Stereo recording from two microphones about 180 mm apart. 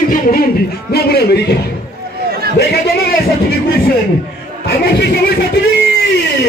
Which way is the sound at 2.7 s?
65° left (ahead or behind).